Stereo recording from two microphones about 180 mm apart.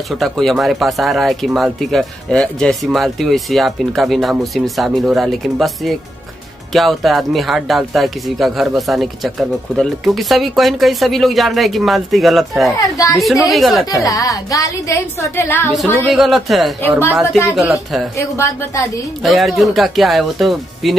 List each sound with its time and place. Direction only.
0.1 s speech: centre (ahead or behind)
12.9 s a woman's voice: 20° left (ahead or behind)
13.2 s speech: centre (ahead or behind)
13.8 s a woman's voice: 20° left (ahead or behind)
16.1 s speech: centre (ahead or behind)
18.3 s a woman's voice: 15° left (ahead or behind)
19.2 s speech: centre (ahead or behind)